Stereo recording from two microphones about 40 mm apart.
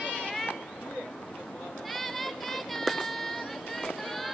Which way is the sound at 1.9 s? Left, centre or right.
Centre.